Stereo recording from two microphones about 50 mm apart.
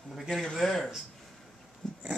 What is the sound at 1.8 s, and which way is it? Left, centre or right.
Dog, centre.